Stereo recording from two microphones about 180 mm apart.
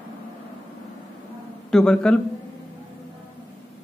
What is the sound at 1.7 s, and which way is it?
Speech, 5° left (ahead or behind).